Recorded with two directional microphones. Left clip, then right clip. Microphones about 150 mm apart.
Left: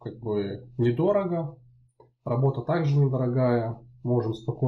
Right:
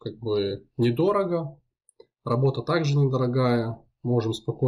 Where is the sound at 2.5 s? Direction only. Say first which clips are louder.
Right 2 dB; 15° right (ahead or behind).